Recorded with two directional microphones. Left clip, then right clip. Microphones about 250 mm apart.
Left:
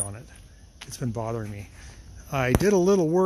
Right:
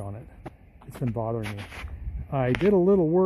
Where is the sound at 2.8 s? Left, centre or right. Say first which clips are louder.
Even; centre.